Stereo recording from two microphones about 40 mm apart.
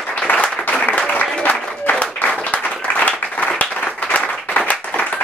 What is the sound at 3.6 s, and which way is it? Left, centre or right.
Clapping, left.